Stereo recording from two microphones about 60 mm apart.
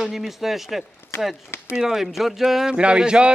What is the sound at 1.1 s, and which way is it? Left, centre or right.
Speech, left.